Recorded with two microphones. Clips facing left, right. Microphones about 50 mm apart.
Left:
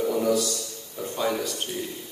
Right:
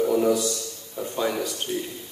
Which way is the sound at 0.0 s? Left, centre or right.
Centre.